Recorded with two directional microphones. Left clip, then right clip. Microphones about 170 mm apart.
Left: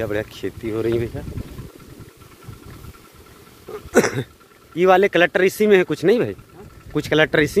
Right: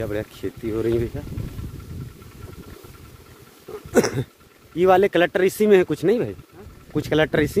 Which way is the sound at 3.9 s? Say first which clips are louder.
Left 2 dB; 15° right (ahead or behind).